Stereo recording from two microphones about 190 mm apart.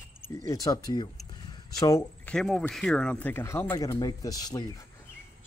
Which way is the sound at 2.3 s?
5° left (ahead or behind).